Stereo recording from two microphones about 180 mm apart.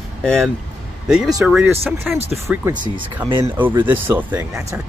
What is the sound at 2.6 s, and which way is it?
Speech, 25° right (ahead or behind).